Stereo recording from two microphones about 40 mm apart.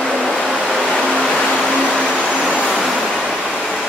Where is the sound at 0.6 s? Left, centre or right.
Centre.